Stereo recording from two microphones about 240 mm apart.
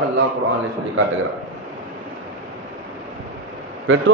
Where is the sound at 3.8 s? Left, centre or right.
Right.